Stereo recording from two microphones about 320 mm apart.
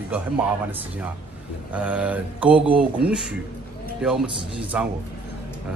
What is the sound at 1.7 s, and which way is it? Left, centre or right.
Speech, centre.